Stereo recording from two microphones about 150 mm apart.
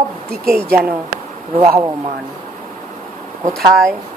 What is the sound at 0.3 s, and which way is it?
Speech, 75° right (ahead or behind).